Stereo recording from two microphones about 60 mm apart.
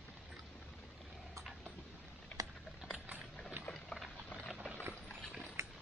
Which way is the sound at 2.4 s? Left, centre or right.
Right.